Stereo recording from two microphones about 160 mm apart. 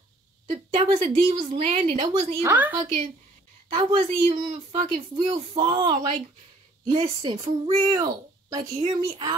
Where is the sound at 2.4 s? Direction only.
10° right (ahead or behind).